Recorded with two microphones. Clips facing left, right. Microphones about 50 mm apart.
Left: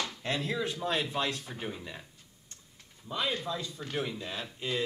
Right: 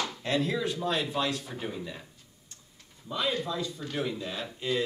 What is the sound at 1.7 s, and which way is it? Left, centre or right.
Speech, centre.